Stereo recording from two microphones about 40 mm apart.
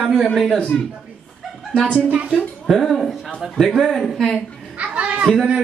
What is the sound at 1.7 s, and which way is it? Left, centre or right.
Speech, left.